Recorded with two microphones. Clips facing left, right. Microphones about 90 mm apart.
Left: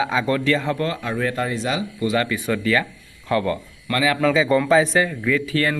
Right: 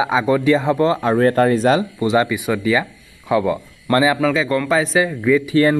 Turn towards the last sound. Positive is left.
turn(degrees=-20)  # may be behind; listen again after turning